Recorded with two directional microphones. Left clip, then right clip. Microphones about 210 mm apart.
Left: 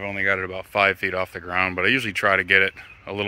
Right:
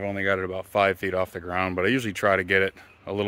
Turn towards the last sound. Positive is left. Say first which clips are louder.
# even
turn(degrees=-20)  # may be behind; listen again after turning